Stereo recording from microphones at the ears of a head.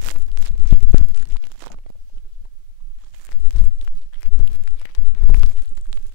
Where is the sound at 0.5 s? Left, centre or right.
Left.